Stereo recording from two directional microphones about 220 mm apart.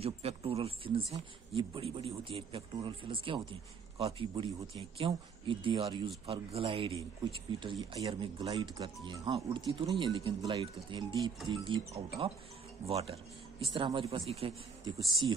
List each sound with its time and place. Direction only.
0.0 s a man's voice: 25° right (ahead or behind)